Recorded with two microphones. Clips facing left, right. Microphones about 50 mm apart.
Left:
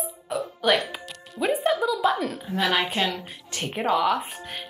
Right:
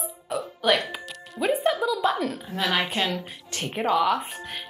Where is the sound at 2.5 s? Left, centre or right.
Left.